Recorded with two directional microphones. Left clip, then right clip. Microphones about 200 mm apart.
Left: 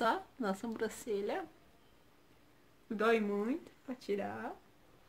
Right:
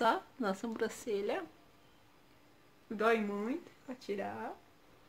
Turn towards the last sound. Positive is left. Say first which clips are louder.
# left 1 dB
turn(degrees=25)  # may be behind; listen again after turning